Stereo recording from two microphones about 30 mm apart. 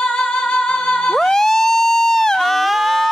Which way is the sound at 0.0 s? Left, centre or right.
Left.